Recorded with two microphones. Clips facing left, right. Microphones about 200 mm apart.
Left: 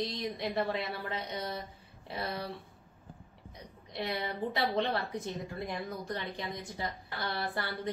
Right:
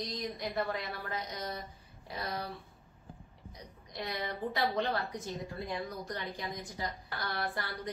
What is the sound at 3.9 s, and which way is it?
A woman's voice, 25° left (ahead or behind).